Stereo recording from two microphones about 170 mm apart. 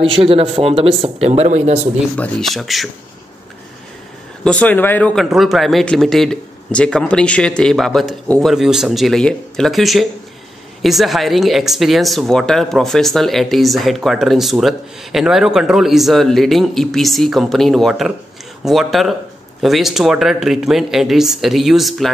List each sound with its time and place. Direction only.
0.0 s speech: centre (ahead or behind)
0.3 s speech: 35° right (ahead or behind)
2.1 s speech: 5° left (ahead or behind)
4.5 s speech: 10° left (ahead or behind)